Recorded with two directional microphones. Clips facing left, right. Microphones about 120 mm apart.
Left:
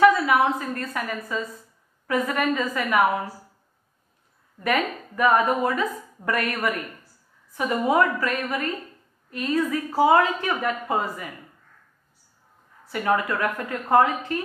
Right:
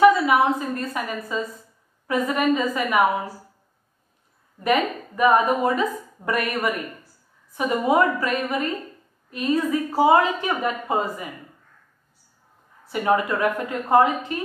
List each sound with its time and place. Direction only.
0.0 s a sound: 20° right (ahead or behind)
2.0 s a woman's voice: 20° right (ahead or behind)
4.6 s a woman's voice: 20° right (ahead or behind)
12.9 s a woman's voice: 20° right (ahead or behind)